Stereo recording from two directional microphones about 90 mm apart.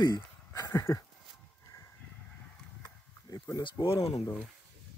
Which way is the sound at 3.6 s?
65° left (ahead or behind).